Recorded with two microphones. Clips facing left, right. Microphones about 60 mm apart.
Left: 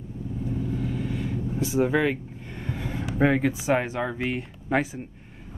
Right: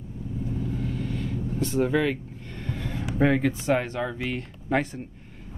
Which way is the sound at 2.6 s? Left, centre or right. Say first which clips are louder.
Left 1 dB; centre.